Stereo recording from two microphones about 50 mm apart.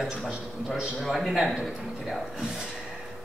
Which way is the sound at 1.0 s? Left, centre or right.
Centre.